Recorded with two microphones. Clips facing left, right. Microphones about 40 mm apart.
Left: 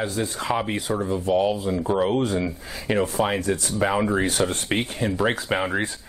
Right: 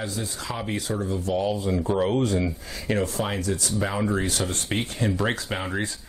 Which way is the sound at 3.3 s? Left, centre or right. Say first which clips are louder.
Left 3 dB; left.